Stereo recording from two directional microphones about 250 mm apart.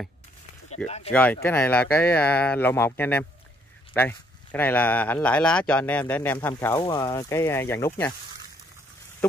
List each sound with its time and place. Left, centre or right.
0.8 s speech: left
1.1 s speech: centre